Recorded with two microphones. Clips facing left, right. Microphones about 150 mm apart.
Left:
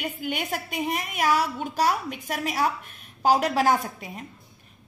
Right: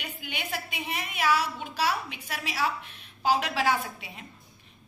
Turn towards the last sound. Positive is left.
turn(degrees=45)  # may be behind; listen again after turning